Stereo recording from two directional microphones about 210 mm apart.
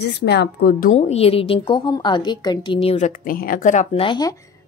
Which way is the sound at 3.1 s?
45° left (ahead or behind).